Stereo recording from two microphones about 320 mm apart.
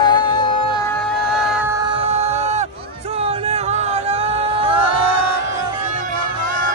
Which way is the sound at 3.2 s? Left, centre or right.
Centre.